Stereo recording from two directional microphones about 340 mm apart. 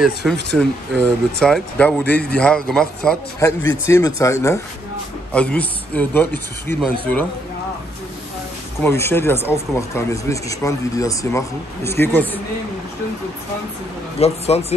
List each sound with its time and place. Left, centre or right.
0.0 s speech: centre
8.8 s speech: centre
14.2 s speech: centre